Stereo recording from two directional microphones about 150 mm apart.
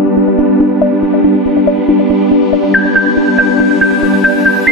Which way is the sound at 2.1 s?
Centre (ahead or behind).